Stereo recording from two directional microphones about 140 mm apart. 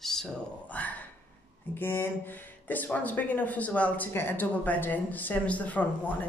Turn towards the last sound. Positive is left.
turn(degrees=10)  # may be behind; listen again after turning